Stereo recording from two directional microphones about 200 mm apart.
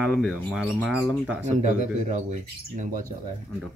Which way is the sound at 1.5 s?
35° right (ahead or behind).